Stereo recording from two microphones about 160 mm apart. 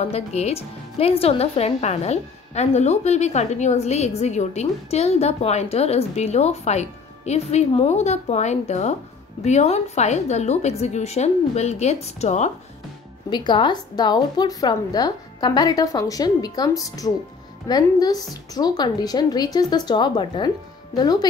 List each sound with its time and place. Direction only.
0.0 s a woman's voice: 40° left (ahead or behind)
13.3 s a woman's voice: 30° left (ahead or behind)